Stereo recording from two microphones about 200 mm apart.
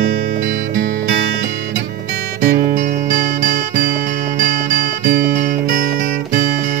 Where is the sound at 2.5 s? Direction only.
45° right (ahead or behind).